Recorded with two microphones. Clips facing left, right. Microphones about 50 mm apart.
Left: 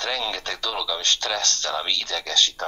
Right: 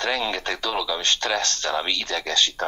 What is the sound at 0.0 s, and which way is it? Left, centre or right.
Speech, centre.